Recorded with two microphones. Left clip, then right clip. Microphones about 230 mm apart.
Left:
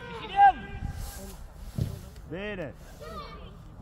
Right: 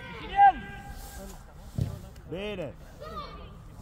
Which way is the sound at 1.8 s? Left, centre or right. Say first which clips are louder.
Even; centre.